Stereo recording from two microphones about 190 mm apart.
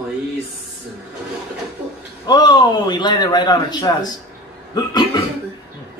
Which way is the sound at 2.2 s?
20° left (ahead or behind).